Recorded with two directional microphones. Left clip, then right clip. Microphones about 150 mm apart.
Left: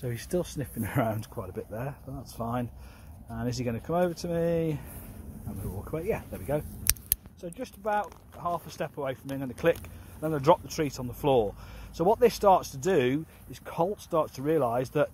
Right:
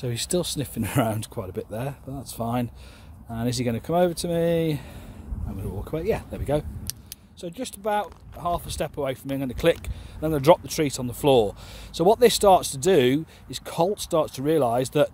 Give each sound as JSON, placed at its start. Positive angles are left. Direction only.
{"t": 0.0, "sound": "speech", "side_deg": -25}
{"t": 6.3, "sound": "speech", "side_deg": -40}
{"t": 6.9, "sound": "a sound", "side_deg": 45}
{"t": 7.4, "sound": "speech", "side_deg": -40}